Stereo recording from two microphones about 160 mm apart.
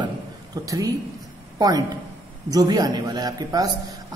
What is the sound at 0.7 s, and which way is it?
A woman's voice, 20° right (ahead or behind).